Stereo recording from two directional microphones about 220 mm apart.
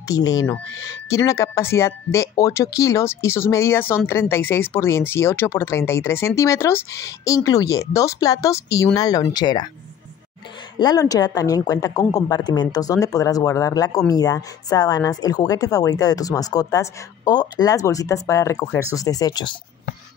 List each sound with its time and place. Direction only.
0.1 s speech: 15° left (ahead or behind)
10.8 s speech: 15° left (ahead or behind)